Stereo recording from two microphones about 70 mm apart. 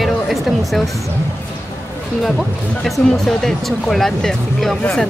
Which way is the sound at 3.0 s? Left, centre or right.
Centre.